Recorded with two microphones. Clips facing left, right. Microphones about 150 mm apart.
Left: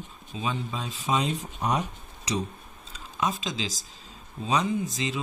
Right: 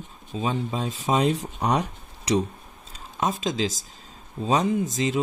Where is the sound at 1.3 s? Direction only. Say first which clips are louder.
Right 4 dB; 80° right.